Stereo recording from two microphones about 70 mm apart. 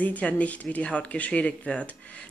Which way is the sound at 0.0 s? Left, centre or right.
Left.